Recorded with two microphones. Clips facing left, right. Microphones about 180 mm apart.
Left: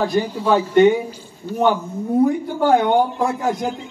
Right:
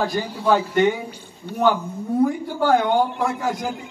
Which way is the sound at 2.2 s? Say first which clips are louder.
Left 3 dB; 20° left (ahead or behind).